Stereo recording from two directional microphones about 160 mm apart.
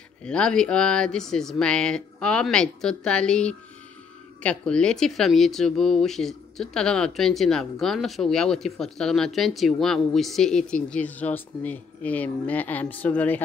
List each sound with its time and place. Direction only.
0.2 s speech: 5° left (ahead or behind)